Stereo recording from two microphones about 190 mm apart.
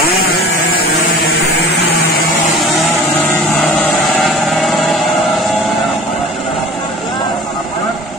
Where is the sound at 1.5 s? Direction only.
60° left (ahead or behind).